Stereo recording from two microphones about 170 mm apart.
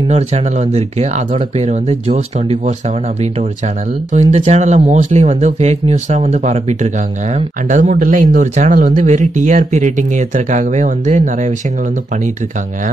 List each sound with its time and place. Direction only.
0.1 s speech: 40° right (ahead or behind)
4.4 s speech: 40° right (ahead or behind)